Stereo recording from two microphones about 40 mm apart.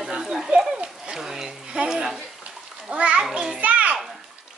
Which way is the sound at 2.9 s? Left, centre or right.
Right.